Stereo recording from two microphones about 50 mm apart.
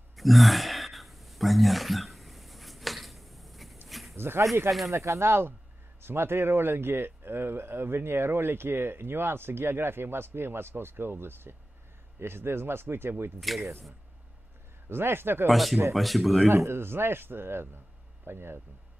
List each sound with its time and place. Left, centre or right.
0.1 s gasp: centre
3.9 s a sound: centre
4.6 s speech: centre
4.9 s speech: right
5.9 s speech: right
13.5 s speech: centre
14.9 s speech: right
15.4 s speech: centre
16.4 s speech: right